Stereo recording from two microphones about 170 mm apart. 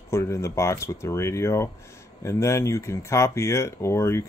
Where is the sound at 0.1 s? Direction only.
15° left (ahead or behind).